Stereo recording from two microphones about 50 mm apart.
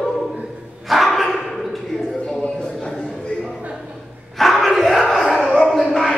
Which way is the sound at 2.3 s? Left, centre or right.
Centre.